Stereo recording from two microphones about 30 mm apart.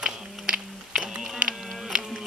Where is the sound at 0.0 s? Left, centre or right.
Right.